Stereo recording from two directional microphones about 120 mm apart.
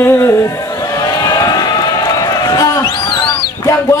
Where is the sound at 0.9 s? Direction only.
35° left (ahead or behind).